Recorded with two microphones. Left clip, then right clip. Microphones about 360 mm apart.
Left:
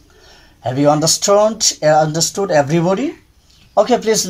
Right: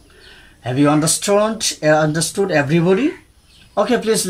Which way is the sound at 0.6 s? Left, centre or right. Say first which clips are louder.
Left 3 dB; centre.